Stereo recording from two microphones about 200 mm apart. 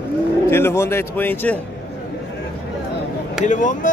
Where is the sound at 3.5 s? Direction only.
40° left (ahead or behind).